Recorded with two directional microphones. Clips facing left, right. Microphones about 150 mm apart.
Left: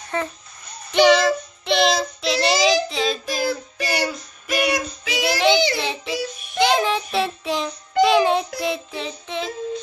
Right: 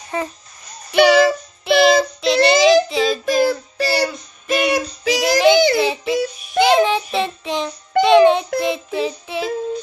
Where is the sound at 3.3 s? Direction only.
45° right (ahead or behind).